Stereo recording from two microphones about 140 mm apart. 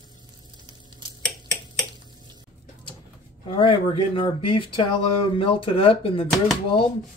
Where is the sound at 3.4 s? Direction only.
40° left (ahead or behind).